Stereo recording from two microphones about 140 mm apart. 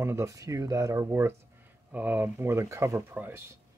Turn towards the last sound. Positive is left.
turn(degrees=-15)  # may be behind; listen again after turning